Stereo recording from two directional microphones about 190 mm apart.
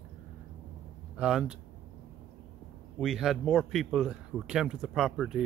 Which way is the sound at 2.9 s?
Centre (ahead or behind).